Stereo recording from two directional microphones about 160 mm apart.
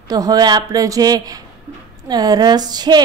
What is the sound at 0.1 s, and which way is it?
A woman's voice, 25° right (ahead or behind).